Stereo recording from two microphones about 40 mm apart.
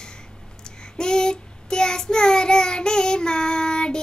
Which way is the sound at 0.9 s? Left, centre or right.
Centre.